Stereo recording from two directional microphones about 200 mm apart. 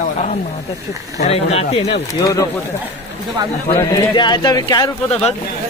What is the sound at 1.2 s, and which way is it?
Speech, 30° left (ahead or behind).